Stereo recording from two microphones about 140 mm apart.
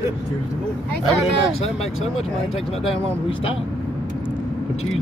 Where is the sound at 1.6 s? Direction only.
50° left (ahead or behind).